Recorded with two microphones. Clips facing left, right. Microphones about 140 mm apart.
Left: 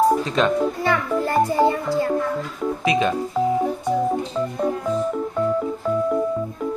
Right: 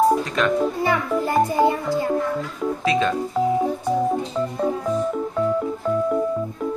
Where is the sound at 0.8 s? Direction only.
15° right (ahead or behind).